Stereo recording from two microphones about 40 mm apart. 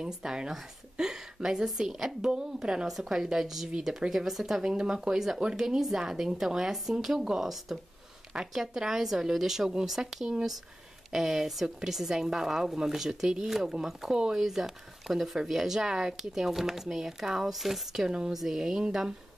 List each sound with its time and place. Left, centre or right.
0.0 s speech: centre
2.9 s speech: centre
4.7 s speech: centre
7.4 s speech: centre
18.0 s speech: centre